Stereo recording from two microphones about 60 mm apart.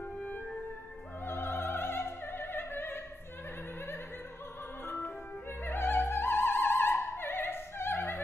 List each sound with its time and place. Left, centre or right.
1.2 s opera: left
4.8 s music: left
5.6 s opera: left